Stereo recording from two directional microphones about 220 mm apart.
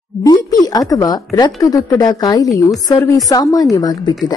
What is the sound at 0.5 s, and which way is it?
A woman's voice, 15° left (ahead or behind).